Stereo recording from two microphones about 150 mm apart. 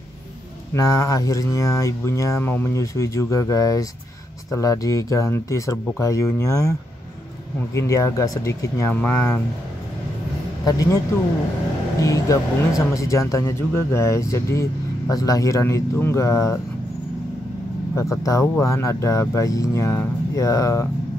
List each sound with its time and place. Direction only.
0.7 s speech: 25° left (ahead or behind)
7.7 s speech: 20° left (ahead or behind)
10.6 s speech: 25° left (ahead or behind)
12.0 s speech: 20° left (ahead or behind)
18.2 s speech: 20° left (ahead or behind)